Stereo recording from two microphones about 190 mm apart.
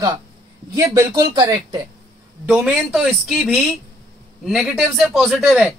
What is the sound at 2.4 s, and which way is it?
A man's voice, 5° right (ahead or behind).